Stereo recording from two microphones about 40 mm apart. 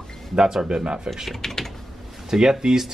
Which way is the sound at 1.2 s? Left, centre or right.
Centre.